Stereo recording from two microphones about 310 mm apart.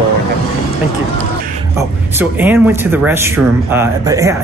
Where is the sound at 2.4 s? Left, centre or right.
Centre.